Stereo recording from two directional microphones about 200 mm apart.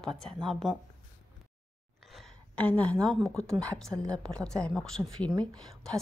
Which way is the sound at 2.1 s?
Centre (ahead or behind).